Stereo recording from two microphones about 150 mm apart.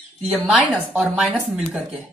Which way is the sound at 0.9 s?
5° right (ahead or behind).